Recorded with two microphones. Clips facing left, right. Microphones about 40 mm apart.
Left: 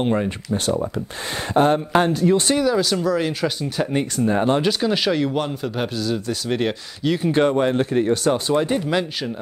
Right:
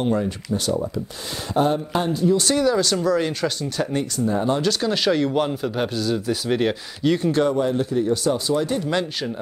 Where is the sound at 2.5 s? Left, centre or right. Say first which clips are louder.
Even; centre.